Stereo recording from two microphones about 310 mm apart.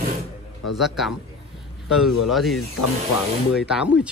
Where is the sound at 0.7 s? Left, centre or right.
Centre.